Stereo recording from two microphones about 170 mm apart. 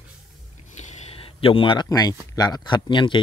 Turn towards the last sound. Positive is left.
turn(degrees=30)  # may be behind; listen again after turning